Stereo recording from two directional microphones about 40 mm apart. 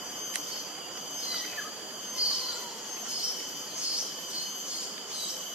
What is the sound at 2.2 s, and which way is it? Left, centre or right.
Train, right.